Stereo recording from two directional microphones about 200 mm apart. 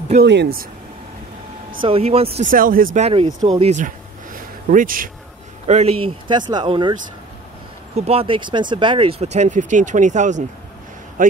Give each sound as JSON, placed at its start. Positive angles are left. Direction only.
{"t": 0.1, "sound": "speech", "side_deg": -55}
{"t": 1.8, "sound": "speech", "side_deg": -30}
{"t": 2.5, "sound": "speech", "side_deg": -45}
{"t": 3.4, "sound": "a sound", "side_deg": -30}
{"t": 5.7, "sound": "speech", "side_deg": -35}